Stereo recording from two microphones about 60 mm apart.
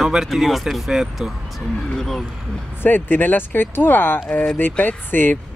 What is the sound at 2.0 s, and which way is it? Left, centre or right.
Speech, centre.